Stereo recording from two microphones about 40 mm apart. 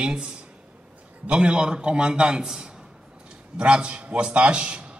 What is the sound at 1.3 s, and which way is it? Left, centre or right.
A man's voice, right.